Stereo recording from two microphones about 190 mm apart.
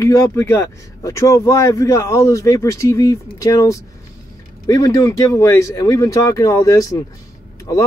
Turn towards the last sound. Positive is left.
turn(degrees=20)  # may be behind; listen again after turning